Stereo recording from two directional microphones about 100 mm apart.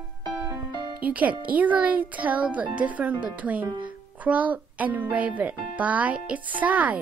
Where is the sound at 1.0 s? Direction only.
15° right (ahead or behind).